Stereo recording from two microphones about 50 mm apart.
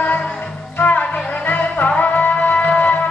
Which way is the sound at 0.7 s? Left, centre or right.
Left.